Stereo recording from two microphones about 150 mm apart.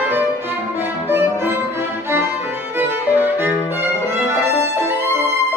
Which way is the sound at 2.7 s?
15° right (ahead or behind).